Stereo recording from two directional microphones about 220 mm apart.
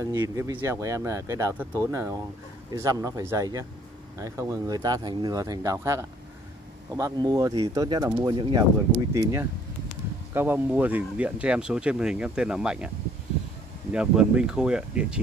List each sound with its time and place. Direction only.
0.0 s speech: 15° right (ahead or behind)
13.9 s speech: 5° right (ahead or behind)